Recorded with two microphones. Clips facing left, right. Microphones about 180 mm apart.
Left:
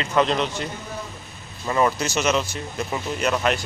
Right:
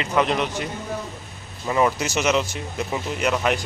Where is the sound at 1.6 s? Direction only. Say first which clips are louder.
Even; 10° right (ahead or behind).